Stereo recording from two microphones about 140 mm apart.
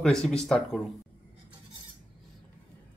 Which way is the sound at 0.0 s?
5° left (ahead or behind).